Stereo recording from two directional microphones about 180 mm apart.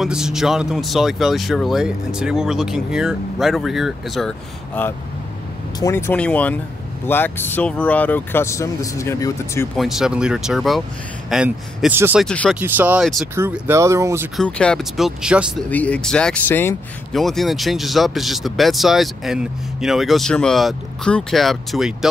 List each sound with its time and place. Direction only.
0.0 s speech: 5° right (ahead or behind); by 9.7 s 15° left (ahead or behind)
9.8 s speech: centre (ahead or behind)
12.2 s speech: 5° left (ahead or behind)
12.5 s speech: 10° right (ahead or behind)
13.0 s speech: centre (ahead or behind)
13.3 s speech: 15° right (ahead or behind)
14.3 s speech: 5° left (ahead or behind)
15.7 s speech: 5° left (ahead or behind)
17.1 s speech: centre (ahead or behind)